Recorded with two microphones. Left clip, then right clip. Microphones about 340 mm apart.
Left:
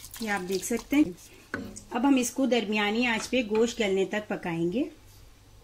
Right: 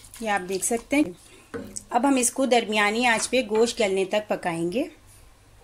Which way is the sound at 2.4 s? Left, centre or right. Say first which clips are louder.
Right 8 dB; right.